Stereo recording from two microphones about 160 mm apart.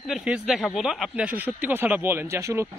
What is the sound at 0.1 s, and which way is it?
Speech, 5° right (ahead or behind).